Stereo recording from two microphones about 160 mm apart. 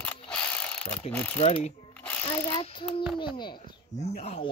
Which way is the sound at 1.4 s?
40° left (ahead or behind).